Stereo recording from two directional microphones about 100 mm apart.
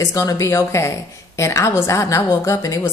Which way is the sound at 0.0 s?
35° left (ahead or behind).